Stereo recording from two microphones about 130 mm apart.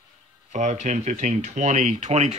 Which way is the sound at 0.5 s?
65° right (ahead or behind).